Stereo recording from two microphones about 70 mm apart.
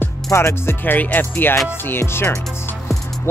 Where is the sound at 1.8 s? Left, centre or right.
Left.